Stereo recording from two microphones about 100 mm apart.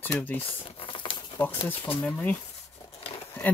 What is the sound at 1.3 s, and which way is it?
Speech, 20° left (ahead or behind).